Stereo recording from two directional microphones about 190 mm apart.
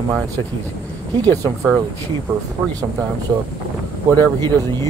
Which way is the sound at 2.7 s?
20° right (ahead or behind).